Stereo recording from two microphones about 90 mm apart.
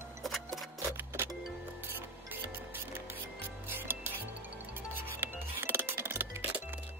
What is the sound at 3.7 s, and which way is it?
Music, 25° right (ahead or behind).